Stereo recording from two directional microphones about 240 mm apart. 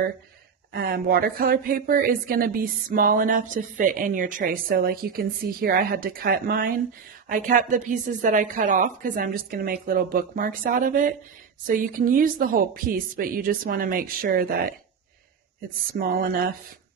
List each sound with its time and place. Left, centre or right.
0.7 s speech: right
15.9 s speech: right